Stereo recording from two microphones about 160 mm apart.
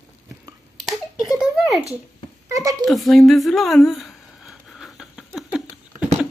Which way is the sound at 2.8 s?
Centre (ahead or behind).